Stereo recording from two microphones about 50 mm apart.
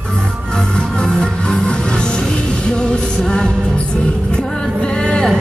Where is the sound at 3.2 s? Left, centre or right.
Centre.